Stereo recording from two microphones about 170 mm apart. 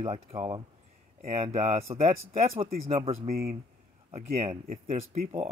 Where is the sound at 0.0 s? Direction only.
35° right (ahead or behind).